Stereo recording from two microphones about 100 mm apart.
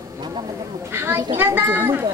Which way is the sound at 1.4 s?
25° right (ahead or behind).